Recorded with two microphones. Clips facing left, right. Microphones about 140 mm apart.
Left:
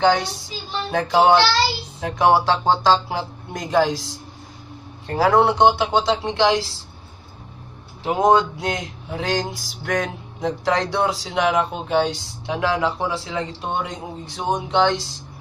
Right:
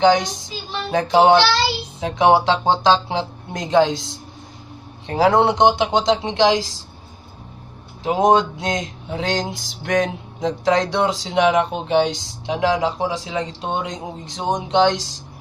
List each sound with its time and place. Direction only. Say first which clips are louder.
0.0 s speech: right 3 dB; 20° right (ahead or behind)
2.0 s music: right 2 dB; 20° right (ahead or behind)
8.0 s music: right 1 dB; 20° right (ahead or behind)